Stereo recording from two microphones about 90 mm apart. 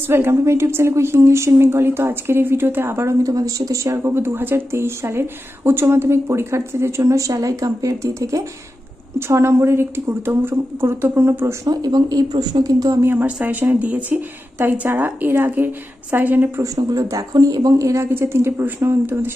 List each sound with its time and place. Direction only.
0.1 s a woman's voice: 30° right (ahead or behind)
11.7 s speech: 50° right (ahead or behind)
13.0 s a woman's voice: 25° right (ahead or behind)
16.6 s a woman's voice: 40° right (ahead or behind)